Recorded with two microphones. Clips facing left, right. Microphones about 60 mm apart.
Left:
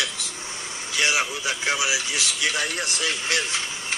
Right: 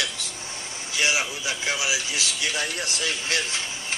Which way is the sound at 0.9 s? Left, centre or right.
Left.